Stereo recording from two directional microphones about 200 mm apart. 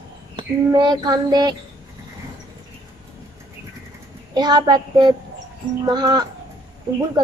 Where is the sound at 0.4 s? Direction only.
20° right (ahead or behind).